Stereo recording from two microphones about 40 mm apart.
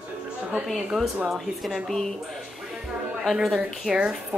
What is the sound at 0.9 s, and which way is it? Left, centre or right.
Speech, centre.